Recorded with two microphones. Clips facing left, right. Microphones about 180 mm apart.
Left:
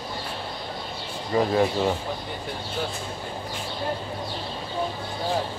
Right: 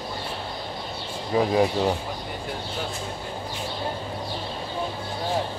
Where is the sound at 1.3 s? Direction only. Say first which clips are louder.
Even; 10° right (ahead or behind).